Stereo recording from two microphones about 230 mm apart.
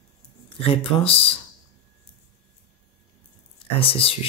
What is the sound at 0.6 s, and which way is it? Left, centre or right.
Speech, left.